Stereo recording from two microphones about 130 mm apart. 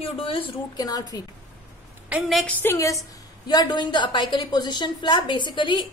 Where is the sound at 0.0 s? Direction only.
45° left (ahead or behind).